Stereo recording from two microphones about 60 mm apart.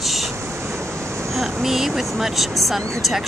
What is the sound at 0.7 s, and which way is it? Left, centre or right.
Waves, right.